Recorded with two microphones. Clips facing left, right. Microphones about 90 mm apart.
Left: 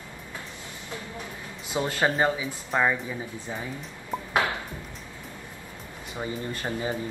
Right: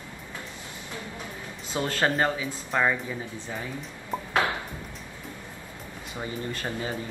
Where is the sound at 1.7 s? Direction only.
15° left (ahead or behind).